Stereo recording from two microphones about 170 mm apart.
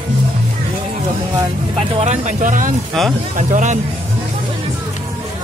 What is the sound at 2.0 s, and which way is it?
Speech, 45° right (ahead or behind).